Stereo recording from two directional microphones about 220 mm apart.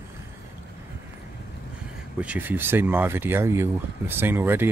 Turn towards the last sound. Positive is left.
turn(degrees=-10)  # may be behind; listen again after turning